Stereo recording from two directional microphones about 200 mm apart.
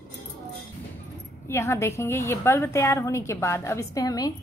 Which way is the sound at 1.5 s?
15° left (ahead or behind).